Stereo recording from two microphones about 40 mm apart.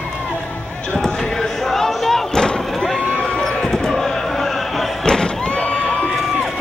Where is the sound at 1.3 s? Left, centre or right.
Centre.